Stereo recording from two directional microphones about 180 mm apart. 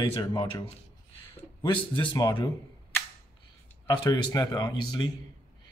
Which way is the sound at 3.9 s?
20° left (ahead or behind).